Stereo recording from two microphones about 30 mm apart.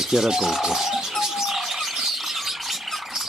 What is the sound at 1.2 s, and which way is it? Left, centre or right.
Bird, centre.